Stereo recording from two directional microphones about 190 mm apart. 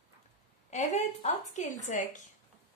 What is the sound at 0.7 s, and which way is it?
A woman's voice, 40° left (ahead or behind).